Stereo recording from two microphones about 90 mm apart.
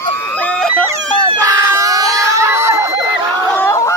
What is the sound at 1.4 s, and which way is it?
Screaming, 40° right (ahead or behind).